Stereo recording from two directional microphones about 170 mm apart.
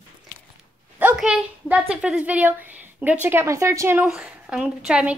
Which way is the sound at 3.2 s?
15° right (ahead or behind).